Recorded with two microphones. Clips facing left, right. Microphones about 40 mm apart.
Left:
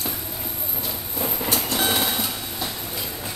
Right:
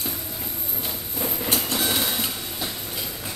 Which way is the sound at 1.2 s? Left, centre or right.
Centre.